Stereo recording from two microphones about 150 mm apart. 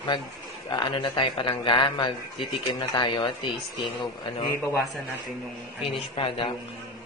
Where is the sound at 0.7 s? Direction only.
30° left (ahead or behind).